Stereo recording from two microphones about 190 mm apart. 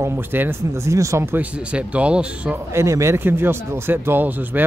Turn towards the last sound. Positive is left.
turn(degrees=-10)  # may be behind; listen again after turning